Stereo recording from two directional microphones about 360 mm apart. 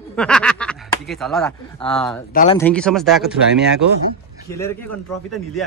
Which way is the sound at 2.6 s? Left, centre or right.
Centre.